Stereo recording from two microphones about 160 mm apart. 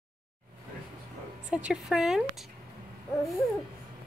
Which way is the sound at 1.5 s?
5° right (ahead or behind).